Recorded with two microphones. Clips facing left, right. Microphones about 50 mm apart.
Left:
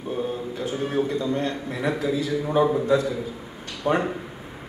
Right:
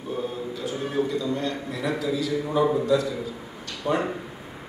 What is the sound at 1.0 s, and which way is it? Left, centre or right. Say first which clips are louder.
A man's voice: left 2 dB; left.